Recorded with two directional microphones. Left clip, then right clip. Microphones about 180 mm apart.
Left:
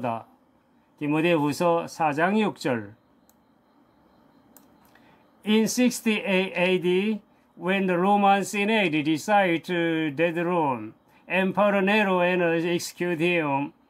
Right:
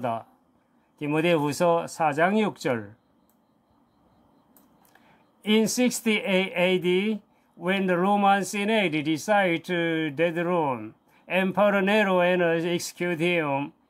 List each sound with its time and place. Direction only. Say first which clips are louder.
0.0 s speech: even; 15° right (ahead or behind)
4.9 s speech: left 2 dB; 20° right (ahead or behind)